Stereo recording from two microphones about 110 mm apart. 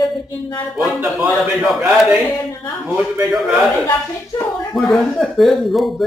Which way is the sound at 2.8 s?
20° right (ahead or behind).